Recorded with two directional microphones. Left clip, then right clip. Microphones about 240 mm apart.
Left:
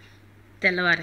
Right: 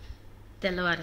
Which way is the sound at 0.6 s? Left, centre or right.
Centre.